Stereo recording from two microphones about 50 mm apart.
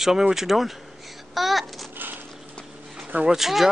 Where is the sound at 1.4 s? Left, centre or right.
Centre.